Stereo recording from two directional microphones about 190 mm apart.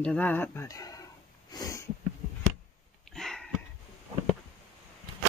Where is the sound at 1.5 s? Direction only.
20° left (ahead or behind).